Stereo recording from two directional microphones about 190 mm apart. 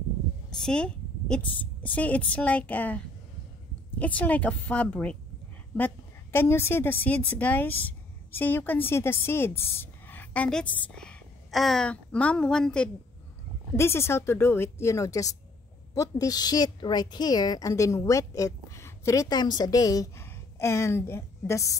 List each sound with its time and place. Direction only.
0.7 s a woman's voice: 5° left (ahead or behind)
4.0 s a woman's voice: 10° left (ahead or behind)